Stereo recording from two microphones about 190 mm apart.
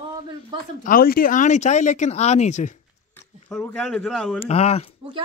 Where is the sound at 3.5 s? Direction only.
5° left (ahead or behind).